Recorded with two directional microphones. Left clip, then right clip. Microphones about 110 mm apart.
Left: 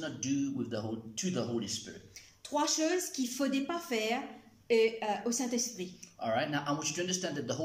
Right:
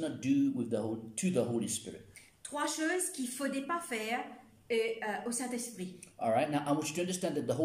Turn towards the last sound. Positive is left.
turn(degrees=-30)  # may be behind; listen again after turning